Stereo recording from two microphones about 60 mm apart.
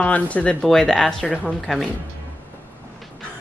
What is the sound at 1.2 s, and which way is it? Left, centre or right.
Speech, centre.